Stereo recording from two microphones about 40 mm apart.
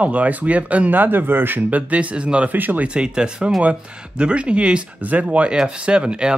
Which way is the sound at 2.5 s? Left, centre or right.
Right.